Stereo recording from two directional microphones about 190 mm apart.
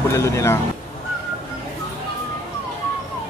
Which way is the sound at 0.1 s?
15° left (ahead or behind).